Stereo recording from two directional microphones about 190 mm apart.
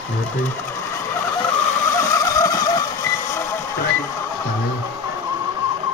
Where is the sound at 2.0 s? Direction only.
15° left (ahead or behind).